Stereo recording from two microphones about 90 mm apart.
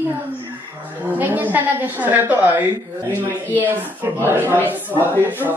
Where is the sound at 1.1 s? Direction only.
20° right (ahead or behind).